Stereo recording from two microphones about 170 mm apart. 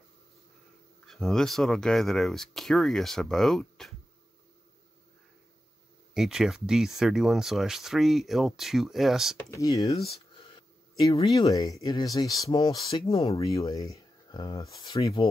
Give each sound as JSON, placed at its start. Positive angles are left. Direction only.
{"t": 1.0, "sound": "speech", "side_deg": 0}
{"t": 6.1, "sound": "speech", "side_deg": 0}
{"t": 9.5, "sound": "speech", "side_deg": 20}
{"t": 10.0, "sound": "a sound", "side_deg": 35}
{"t": 11.3, "sound": "speech", "side_deg": 20}
{"t": 13.1, "sound": "speech", "side_deg": 35}
{"t": 13.6, "sound": "speech", "side_deg": 20}